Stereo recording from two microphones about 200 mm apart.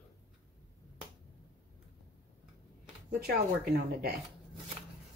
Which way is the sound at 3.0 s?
50° right (ahead or behind).